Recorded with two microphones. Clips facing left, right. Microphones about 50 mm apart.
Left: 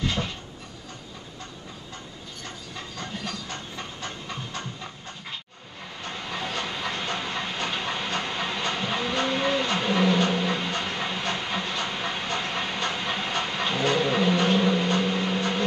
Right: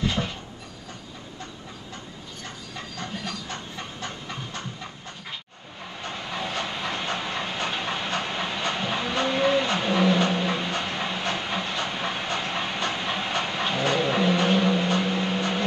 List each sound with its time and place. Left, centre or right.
0.0 s a sound: right
3.0 s train: right
4.0 s pant: right
6.0 s train: centre
7.2 s steam: centre
7.5 s train: centre
11.4 s hiss: centre
12.4 s train: centre
14.7 s vehicle: right